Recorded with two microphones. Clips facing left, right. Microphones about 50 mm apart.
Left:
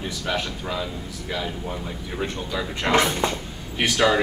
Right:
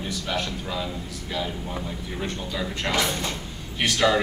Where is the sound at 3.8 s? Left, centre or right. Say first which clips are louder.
Left 2 dB; centre.